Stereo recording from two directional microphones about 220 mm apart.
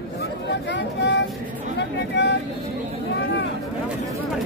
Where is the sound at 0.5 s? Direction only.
50° left (ahead or behind).